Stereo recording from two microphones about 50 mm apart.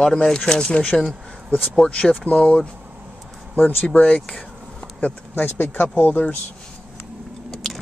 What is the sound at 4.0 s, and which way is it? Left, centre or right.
Speech, left.